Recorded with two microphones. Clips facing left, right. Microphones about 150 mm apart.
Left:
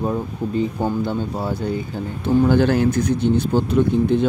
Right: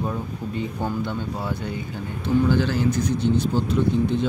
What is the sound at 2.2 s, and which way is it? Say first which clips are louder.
Speech: left 5 dB; 55° left (ahead or behind).